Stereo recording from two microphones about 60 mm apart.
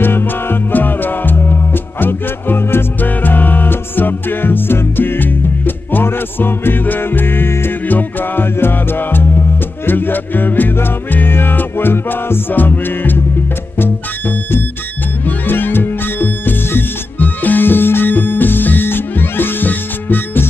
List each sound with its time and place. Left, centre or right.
0.0 s music: left
7.8 s music: left